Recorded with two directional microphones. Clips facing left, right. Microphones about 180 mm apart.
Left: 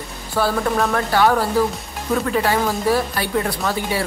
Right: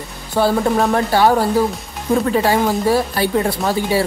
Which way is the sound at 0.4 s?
30° right (ahead or behind).